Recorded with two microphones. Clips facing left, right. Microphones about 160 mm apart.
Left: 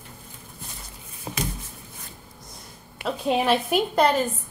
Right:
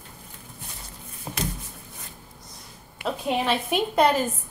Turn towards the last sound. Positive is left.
turn(degrees=0)  # may be behind; listen again after turning